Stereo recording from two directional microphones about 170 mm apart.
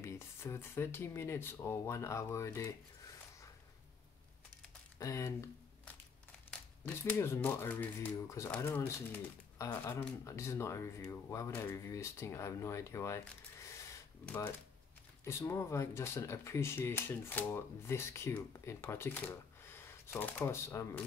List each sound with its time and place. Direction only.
0.0 s speech: 15° left (ahead or behind)
4.9 s speech: 20° left (ahead or behind)
7.1 s speech: 15° left (ahead or behind)